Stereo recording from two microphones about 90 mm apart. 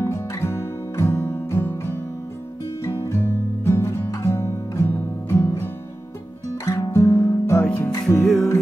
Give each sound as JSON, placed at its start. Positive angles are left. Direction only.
{"t": 0.0, "sound": "music", "side_deg": 30}
{"t": 6.6, "sound": "music", "side_deg": 35}
{"t": 7.6, "sound": "music", "side_deg": 10}